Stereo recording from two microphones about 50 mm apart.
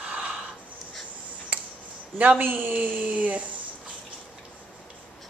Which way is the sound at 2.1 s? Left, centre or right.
Right.